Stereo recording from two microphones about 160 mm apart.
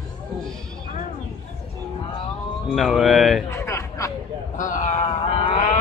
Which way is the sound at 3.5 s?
15° left (ahead or behind).